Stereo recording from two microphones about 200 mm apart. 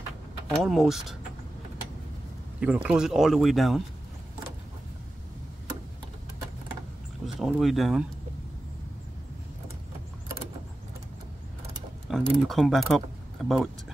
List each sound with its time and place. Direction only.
0.6 s speech: centre (ahead or behind)
2.6 s speech: 5° right (ahead or behind)
7.3 s speech: centre (ahead or behind)
12.1 s speech: centre (ahead or behind)